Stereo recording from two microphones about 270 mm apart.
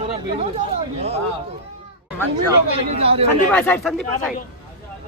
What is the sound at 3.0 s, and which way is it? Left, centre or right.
Speech, right.